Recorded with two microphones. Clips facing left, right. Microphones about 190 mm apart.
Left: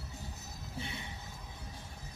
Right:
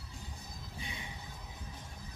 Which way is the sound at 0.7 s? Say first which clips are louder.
Left 4 dB; 15° right (ahead or behind).